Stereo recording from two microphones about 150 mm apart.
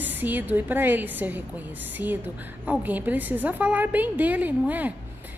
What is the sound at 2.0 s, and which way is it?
Speech, 25° left (ahead or behind).